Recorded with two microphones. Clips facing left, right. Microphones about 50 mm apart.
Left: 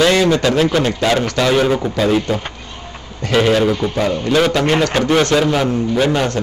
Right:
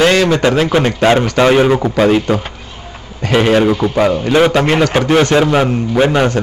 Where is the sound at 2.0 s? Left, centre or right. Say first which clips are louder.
Right 5 dB; right.